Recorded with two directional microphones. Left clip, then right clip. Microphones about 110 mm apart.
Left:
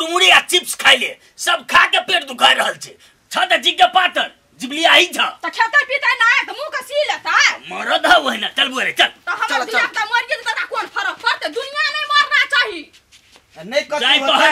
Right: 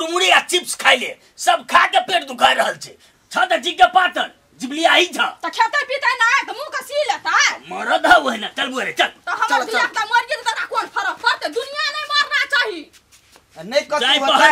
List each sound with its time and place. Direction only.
0.0 s speech: 5° left (ahead or behind)
5.4 s speech: 10° right (ahead or behind)
7.6 s a man's voice: 5° left (ahead or behind)
9.2 s speech: 15° right (ahead or behind)
9.5 s speech: centre (ahead or behind)
9.9 s speech: 10° right (ahead or behind)